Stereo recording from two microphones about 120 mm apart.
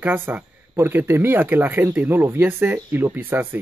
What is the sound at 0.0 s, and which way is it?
Speech, 15° right (ahead or behind).